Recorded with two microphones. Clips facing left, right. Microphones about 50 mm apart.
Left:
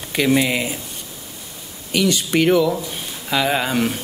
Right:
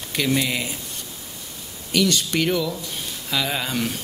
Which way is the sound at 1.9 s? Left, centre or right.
Centre.